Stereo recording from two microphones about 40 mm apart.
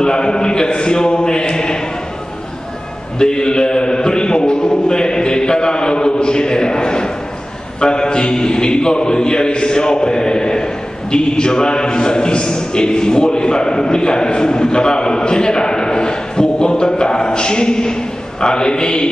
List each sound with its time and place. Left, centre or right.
0.0 s a man's voice: left
3.2 s a man's voice: centre
8.1 s a man's voice: left